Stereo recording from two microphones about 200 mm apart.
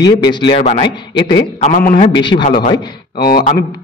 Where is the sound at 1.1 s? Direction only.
20° left (ahead or behind).